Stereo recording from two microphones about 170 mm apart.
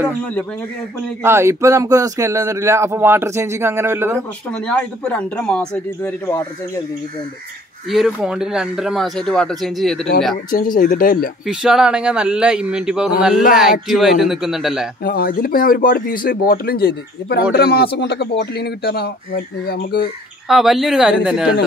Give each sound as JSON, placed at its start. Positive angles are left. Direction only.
{"t": 0.2, "sound": "speech", "side_deg": 5}
{"t": 1.2, "sound": "speech", "side_deg": -15}
{"t": 4.5, "sound": "speech", "side_deg": 5}
{"t": 6.2, "sound": "speech", "side_deg": 15}
{"t": 7.9, "sound": "speech", "side_deg": 0}
{"t": 10.3, "sound": "speech", "side_deg": 55}
{"t": 11.4, "sound": "speech", "side_deg": -5}
{"t": 15.0, "sound": "speech", "side_deg": 60}
{"t": 20.4, "sound": "speech", "side_deg": 0}